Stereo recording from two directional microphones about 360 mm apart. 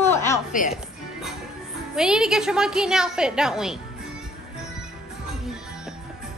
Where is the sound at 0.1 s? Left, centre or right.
Centre.